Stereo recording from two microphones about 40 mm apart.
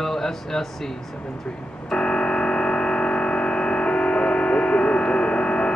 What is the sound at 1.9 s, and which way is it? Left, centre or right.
Music, left.